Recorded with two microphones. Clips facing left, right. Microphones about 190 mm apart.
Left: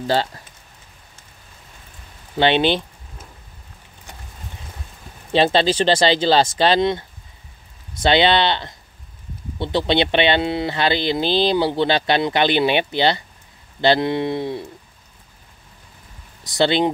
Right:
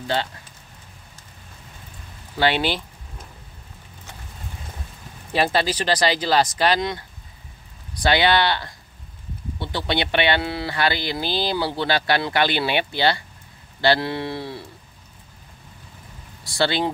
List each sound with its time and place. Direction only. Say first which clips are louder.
0.0 s speech: left 5 dB; 35° left (ahead or behind)
2.3 s speech: left 5 dB; 20° left (ahead or behind)
5.3 s speech: left 5 dB; 25° left (ahead or behind)
16.4 s speech: left 5 dB; 20° left (ahead or behind)